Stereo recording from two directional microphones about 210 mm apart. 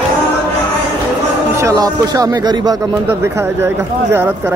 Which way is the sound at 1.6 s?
15° right (ahead or behind).